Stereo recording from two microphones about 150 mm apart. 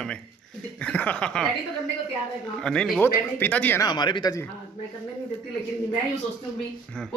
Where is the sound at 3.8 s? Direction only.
30° left (ahead or behind).